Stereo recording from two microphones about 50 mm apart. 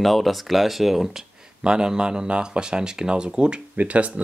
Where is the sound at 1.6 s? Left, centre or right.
Centre.